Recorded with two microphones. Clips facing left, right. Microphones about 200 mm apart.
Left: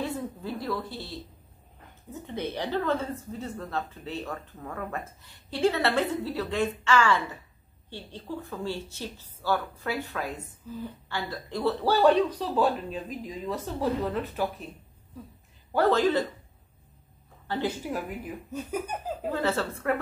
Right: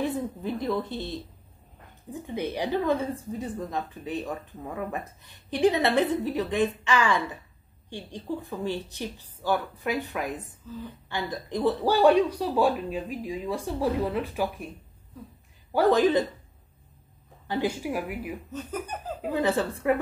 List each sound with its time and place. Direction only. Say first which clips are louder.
0.0 s a woman's voice: right 4 dB; 15° right (ahead or behind)
10.6 s speech: left 1 dB; 10° left (ahead or behind)
11.1 s a woman's voice: right 5 dB; 20° right (ahead or behind)
15.7 s a woman's voice: right 2 dB; 15° right (ahead or behind)
17.5 s a woman's voice: right 2 dB; 10° right (ahead or behind)
18.5 s speech: left 2 dB; 10° left (ahead or behind)
19.2 s a woman's voice: right 3 dB; 15° right (ahead or behind)